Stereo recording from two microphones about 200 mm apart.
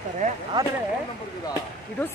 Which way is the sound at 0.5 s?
20° right (ahead or behind).